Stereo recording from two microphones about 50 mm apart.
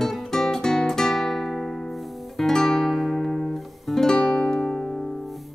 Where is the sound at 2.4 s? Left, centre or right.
Centre.